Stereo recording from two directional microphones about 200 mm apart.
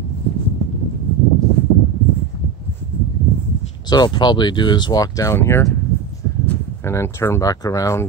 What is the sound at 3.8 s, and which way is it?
Speech, 20° left (ahead or behind).